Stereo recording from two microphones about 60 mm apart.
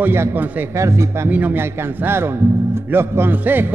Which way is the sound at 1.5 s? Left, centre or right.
Right.